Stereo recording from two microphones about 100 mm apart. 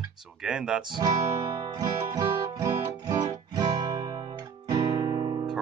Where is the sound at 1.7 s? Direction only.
40° right (ahead or behind).